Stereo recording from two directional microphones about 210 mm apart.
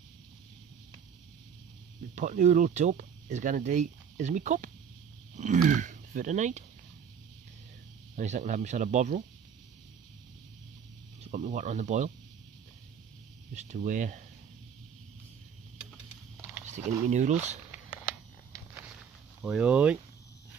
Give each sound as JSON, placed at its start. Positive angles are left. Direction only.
{"t": 2.1, "sound": "speech", "side_deg": -35}
{"t": 8.2, "sound": "speech", "side_deg": -35}
{"t": 11.2, "sound": "speech", "side_deg": -35}
{"t": 13.6, "sound": "speech", "side_deg": -35}
{"t": 16.6, "sound": "speech", "side_deg": -35}
{"t": 19.4, "sound": "speech", "side_deg": -5}